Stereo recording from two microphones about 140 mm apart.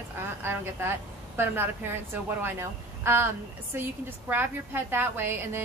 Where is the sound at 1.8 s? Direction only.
15° right (ahead or behind).